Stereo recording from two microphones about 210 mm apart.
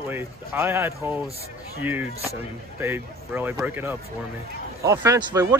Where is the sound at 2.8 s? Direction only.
10° right (ahead or behind).